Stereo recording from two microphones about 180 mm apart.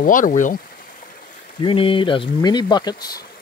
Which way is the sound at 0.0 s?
50° left (ahead or behind).